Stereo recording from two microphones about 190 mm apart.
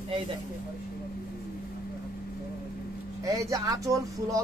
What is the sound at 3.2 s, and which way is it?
Speech, 15° right (ahead or behind).